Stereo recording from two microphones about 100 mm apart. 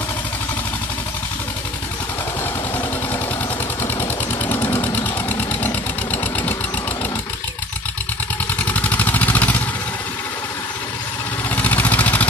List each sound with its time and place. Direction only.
4.5 s vehicle: 20° left (ahead or behind)
6.1 s sewing machine: 15° left (ahead or behind)
8.6 s vehicle: 15° left (ahead or behind)
11.5 s vehicle: 20° left (ahead or behind)